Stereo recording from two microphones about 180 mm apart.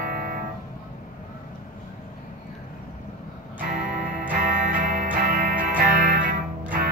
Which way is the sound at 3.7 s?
50° right (ahead or behind).